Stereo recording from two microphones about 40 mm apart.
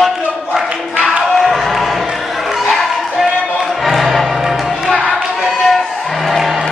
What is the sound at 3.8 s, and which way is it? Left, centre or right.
Music, centre.